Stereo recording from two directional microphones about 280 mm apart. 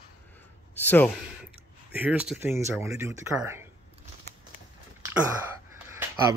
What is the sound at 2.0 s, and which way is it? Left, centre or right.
Speech, centre.